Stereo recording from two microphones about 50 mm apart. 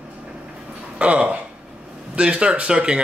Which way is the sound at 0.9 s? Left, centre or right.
Right.